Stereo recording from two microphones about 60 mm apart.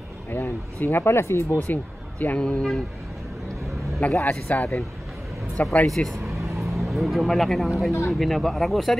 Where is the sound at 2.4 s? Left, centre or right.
Centre.